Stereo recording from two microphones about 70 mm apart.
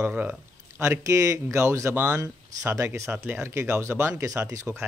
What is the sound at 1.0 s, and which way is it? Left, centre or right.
Speech, right.